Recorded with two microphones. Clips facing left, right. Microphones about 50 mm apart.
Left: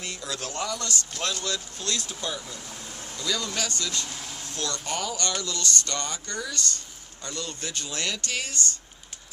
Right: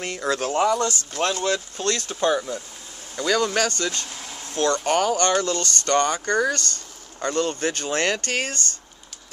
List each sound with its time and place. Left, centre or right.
0.0 s speech: right
0.5 s speech: right
1.8 s speech: right
4.1 s a sound: centre
4.5 s speech: right